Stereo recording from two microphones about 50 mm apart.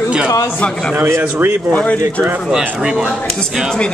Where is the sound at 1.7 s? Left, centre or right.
Left.